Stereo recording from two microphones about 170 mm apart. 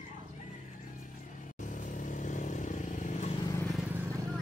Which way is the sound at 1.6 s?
50° left (ahead or behind).